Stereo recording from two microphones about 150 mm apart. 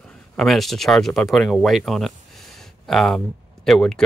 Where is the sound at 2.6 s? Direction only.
Centre (ahead or behind).